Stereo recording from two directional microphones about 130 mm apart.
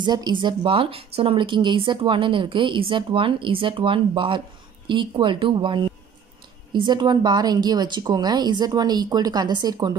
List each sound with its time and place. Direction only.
0.0 s speech: 35° right (ahead or behind)